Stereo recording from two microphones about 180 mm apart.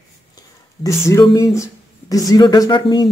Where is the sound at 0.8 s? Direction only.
15° left (ahead or behind).